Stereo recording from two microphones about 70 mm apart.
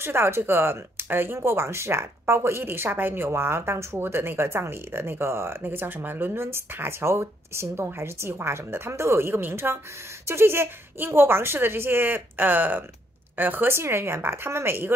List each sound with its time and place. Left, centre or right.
0.0 s speech: right